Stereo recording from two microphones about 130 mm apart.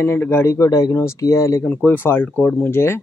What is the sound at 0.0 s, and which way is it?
Speech, 20° left (ahead or behind).